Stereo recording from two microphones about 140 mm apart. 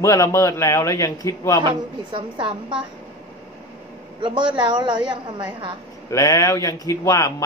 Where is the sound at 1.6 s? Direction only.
40° right (ahead or behind).